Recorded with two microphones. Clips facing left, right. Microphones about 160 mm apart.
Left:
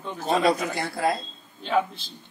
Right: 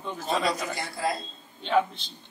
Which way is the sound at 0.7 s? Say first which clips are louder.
Left 4 dB; 60° left (ahead or behind).